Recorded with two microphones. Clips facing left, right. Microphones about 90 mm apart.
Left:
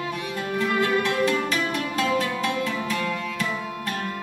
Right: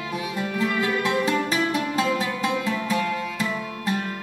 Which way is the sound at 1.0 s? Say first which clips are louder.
Even; 20° right (ahead or behind).